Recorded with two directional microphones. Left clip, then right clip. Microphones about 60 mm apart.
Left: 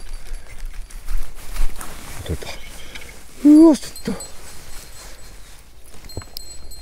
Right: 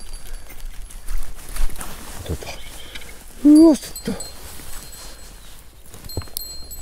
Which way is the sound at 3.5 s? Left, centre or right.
Left.